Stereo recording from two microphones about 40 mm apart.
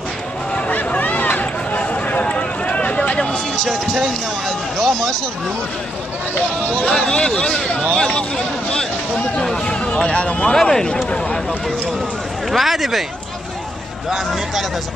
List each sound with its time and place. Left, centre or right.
0.7 s a sound: left
3.2 s speech: centre
6.9 s speech: centre
9.7 s speech: left
12.4 s speech: centre
14.1 s speech: centre